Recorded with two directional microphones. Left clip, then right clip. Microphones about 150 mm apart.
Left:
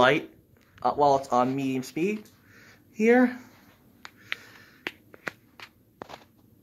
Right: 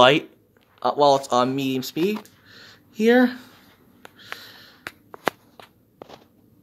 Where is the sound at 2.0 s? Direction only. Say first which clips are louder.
Right 5 dB; 5° right (ahead or behind).